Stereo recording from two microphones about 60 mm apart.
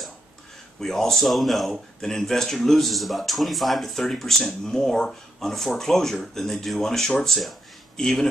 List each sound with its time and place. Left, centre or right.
0.7 s speech: centre